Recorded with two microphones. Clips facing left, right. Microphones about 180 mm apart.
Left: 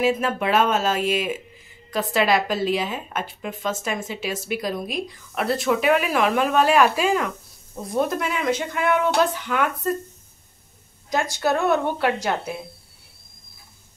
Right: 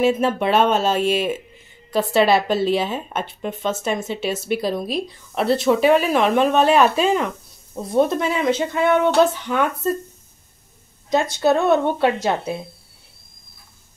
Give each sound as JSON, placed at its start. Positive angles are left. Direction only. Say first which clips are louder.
{"t": 0.0, "sound": "a woman's voice", "louder": "right 4 dB", "side_deg": -30}
{"t": 11.3, "sound": "a woman's voice", "louder": "right 4 dB", "side_deg": -25}